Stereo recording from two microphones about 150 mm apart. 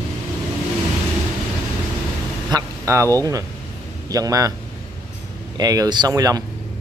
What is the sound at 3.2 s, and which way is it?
Speech, 20° right (ahead or behind).